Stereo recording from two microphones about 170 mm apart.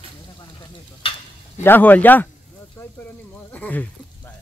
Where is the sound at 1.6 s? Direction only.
10° left (ahead or behind).